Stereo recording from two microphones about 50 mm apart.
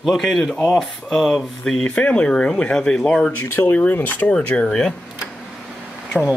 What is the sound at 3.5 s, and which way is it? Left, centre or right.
Speech, left.